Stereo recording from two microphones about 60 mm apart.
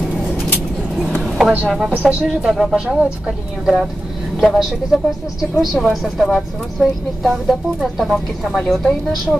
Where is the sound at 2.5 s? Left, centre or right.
Centre.